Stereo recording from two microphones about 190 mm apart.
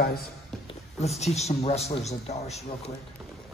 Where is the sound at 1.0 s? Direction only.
35° left (ahead or behind).